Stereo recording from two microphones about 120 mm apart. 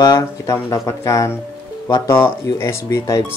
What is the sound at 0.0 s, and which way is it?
Speech, 30° left (ahead or behind).